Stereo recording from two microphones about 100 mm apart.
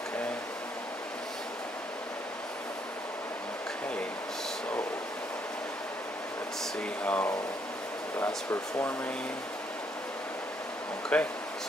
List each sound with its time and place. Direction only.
7.0 s a sound: 15° left (ahead or behind)
8.5 s speech: 20° left (ahead or behind)
11.1 s speech: 10° left (ahead or behind)